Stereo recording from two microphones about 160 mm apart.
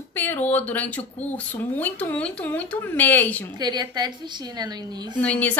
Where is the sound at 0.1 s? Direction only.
10° left (ahead or behind).